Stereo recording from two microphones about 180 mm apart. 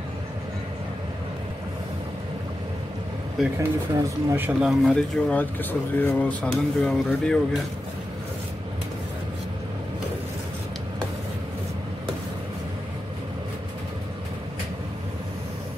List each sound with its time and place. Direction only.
3.3 s speech: 10° right (ahead or behind)
5.3 s speech: 10° left (ahead or behind)